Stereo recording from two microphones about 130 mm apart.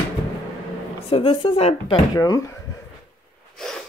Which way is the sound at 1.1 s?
45° left (ahead or behind).